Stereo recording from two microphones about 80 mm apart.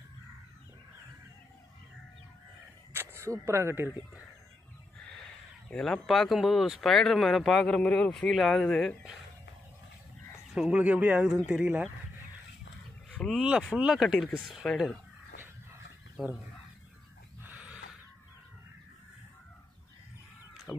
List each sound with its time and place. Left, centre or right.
2.9 s single-lens reflex camera: right
3.3 s speech: right
5.7 s speech: centre
10.7 s a man's voice: centre
13.1 s speech: centre
13.4 s a man's voice: centre
14.0 s speech: centre
16.2 s speech: centre
17.4 s a sound: centre